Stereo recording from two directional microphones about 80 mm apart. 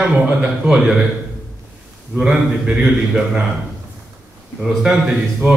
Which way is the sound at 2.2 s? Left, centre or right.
Centre.